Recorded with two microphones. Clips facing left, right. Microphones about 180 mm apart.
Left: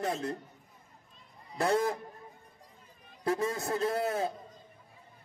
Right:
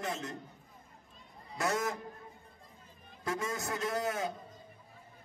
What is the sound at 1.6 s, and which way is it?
Speech, 30° left (ahead or behind).